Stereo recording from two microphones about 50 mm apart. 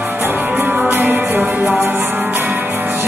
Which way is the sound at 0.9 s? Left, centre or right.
Right.